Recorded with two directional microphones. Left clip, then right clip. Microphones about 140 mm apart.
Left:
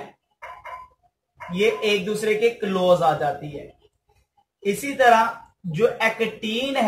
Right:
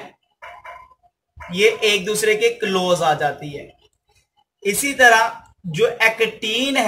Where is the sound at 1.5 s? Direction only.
55° right (ahead or behind).